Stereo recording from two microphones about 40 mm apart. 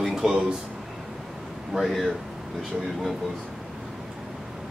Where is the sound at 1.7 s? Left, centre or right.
Centre.